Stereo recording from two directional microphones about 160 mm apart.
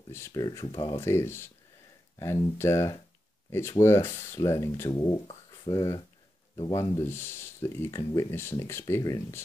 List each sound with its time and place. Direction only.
0.1 s speech: 20° left (ahead or behind)